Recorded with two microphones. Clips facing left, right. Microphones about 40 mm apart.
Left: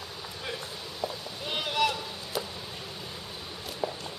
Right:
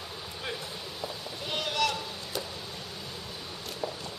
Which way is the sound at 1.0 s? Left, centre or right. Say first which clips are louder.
Left 4 dB; centre.